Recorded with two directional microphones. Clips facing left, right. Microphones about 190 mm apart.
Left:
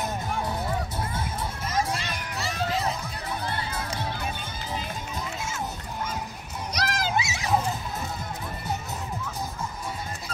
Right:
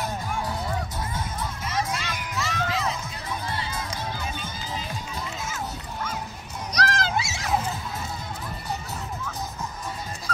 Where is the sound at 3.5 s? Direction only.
60° left (ahead or behind).